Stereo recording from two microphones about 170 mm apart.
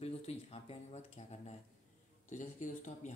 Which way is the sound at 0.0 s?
35° left (ahead or behind).